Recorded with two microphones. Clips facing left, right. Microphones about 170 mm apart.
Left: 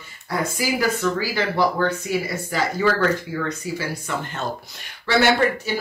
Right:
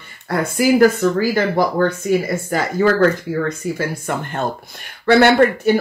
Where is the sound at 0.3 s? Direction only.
55° right (ahead or behind).